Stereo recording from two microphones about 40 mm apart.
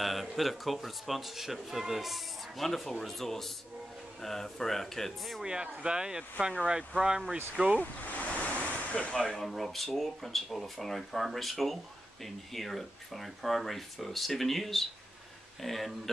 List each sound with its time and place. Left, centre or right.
0.0 s speech: centre
5.4 s speech: right
7.8 s waterfall: left
8.9 s speech: left
9.2 s speech: centre
9.5 s speech: centre